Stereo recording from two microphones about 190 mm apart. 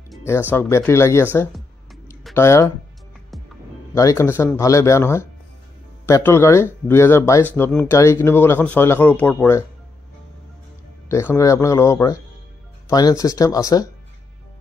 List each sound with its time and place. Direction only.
0.2 s speech: 10° left (ahead or behind)
2.3 s speech: 15° left (ahead or behind)
3.9 s speech: 15° left (ahead or behind)
11.1 s speech: 15° left (ahead or behind)